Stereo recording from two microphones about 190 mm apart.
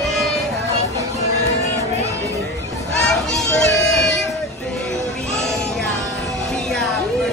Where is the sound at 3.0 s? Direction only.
Centre (ahead or behind).